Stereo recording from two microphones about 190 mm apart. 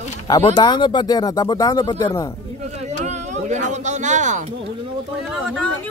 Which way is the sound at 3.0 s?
40° right (ahead or behind).